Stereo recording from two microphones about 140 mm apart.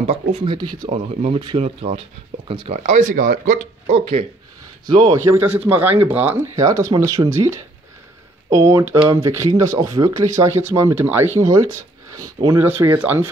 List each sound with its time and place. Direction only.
0.0 s speech: 45° right (ahead or behind)
0.8 s speech: 45° right (ahead or behind)
2.7 s speech: 60° right (ahead or behind); by 3.6 s 75° right (ahead or behind)
3.8 s speech: 50° right (ahead or behind)
4.8 s speech: 35° right (ahead or behind)
5.2 s speech: 15° right (ahead or behind)
6.5 s speech: 25° right (ahead or behind)
12.6 s speech: 15° right (ahead or behind)